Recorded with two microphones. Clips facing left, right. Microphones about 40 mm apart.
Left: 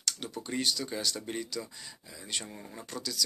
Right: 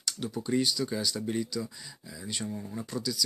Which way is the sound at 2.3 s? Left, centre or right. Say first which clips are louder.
Right 4 dB; left.